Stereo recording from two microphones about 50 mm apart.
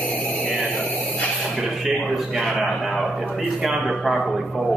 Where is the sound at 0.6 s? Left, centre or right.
Left.